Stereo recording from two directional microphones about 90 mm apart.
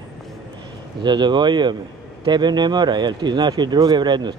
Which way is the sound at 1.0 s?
55° right (ahead or behind).